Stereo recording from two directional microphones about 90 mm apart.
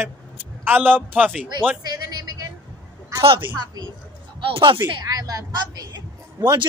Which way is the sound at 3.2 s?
90° right.